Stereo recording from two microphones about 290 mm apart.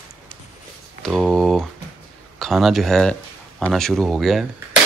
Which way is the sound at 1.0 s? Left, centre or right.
Centre.